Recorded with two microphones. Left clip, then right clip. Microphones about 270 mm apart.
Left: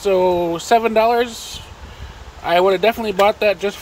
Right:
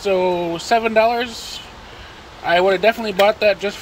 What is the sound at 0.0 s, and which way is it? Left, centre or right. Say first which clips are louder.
Speech: left 2 dB; centre.